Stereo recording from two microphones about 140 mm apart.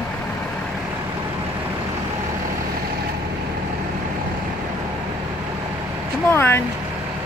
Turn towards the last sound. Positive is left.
turn(degrees=15)  # may be behind; listen again after turning